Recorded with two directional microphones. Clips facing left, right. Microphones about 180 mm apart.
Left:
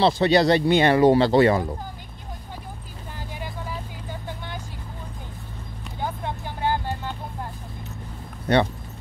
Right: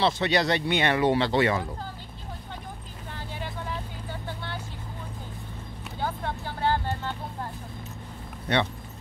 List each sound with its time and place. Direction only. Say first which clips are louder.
0.0 s speech: left 6 dB; 35° left (ahead or behind)
3.3 s vehicle: left 1 dB; 10° left (ahead or behind)
5.9 s vehicle: left 1 dB; 15° left (ahead or behind)
8.5 s speech: left 6 dB; 40° left (ahead or behind)